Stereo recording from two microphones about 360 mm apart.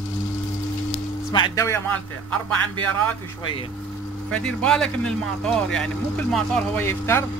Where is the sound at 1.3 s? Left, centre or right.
Centre.